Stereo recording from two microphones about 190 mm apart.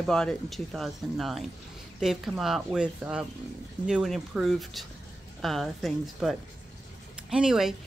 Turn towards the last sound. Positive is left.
turn(degrees=0)  # may be behind; listen again after turning